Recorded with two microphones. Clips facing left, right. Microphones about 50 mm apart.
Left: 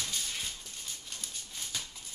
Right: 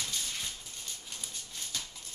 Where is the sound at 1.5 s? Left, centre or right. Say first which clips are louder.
Even; centre.